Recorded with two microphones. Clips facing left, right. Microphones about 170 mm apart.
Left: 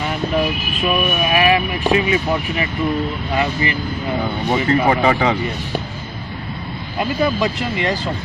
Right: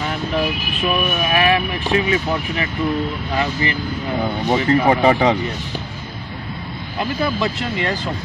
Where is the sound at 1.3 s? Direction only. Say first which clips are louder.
Left 1 dB; 10° left (ahead or behind).